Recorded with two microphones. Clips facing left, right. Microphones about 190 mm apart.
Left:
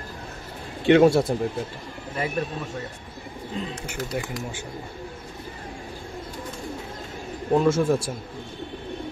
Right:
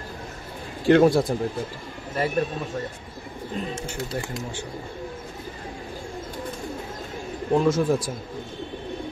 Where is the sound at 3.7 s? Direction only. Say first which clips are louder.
Right 1 dB; 25° right (ahead or behind).